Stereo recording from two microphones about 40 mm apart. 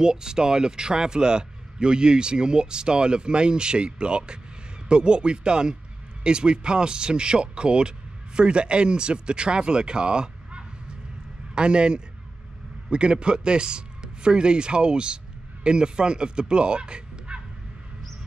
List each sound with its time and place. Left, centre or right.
0.0 s a man's voice: centre